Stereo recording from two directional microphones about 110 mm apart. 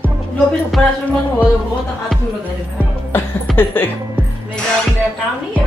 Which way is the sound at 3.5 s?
20° left (ahead or behind).